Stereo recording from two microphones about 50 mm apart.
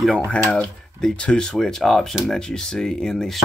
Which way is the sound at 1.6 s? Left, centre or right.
Centre.